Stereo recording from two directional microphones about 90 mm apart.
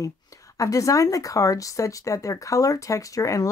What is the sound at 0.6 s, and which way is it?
Speech, 40° left (ahead or behind).